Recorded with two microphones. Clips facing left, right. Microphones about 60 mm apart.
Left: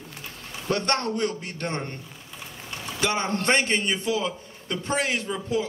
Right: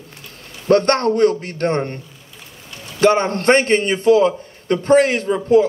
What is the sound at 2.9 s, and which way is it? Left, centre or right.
A man's voice, right.